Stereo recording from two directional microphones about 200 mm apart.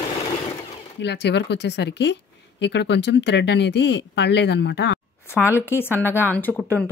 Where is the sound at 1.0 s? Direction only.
60° left (ahead or behind).